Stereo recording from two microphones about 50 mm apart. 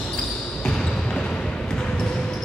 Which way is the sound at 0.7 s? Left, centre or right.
Centre.